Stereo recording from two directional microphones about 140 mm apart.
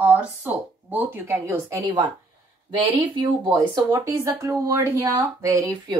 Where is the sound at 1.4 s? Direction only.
20° right (ahead or behind).